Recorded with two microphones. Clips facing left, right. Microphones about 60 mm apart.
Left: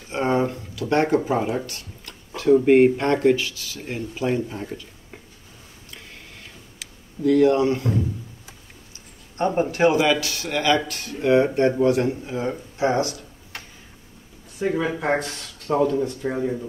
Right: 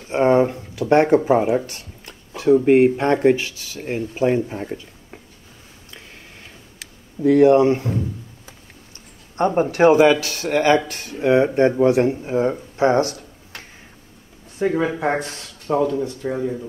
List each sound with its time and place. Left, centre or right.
0.1 s speech: right
1.7 s a sound: right
2.4 s speech: centre
7.2 s speech: right
9.6 s speech: right
12.7 s a sound: right
14.6 s speech: right
15.1 s speech: right
15.6 s speech: centre